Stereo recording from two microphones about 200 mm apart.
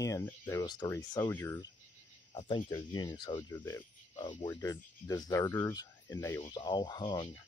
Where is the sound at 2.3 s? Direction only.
25° left (ahead or behind).